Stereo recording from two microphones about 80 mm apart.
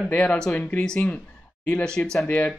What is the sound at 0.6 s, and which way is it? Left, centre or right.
Speech, left.